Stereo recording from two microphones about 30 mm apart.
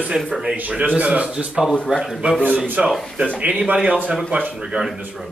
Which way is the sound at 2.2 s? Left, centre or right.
Right.